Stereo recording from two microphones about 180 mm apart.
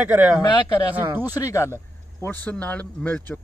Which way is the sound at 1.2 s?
20° left (ahead or behind).